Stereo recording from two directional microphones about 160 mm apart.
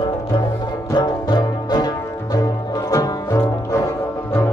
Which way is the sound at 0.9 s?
25° left (ahead or behind).